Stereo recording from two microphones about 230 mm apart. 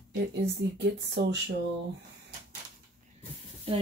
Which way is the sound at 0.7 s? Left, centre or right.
Right.